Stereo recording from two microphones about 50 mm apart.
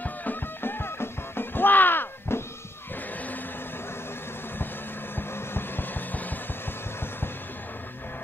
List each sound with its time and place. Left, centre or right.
0.0 s music: left
5.1 s vehicle: left